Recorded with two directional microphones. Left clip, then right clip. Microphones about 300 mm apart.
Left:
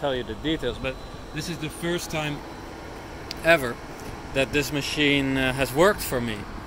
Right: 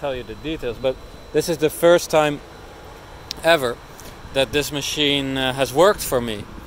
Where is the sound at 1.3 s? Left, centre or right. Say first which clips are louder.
Right 15 dB; right; by 6.4 s centre.